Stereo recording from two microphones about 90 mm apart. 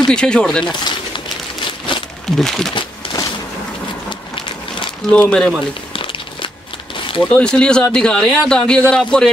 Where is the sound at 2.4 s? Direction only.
5° left (ahead or behind).